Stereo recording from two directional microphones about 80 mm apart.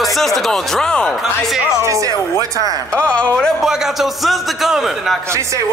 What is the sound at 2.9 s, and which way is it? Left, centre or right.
Speech, centre.